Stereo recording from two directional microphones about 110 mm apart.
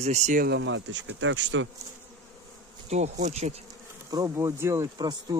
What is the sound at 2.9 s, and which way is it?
Bee, 85° right.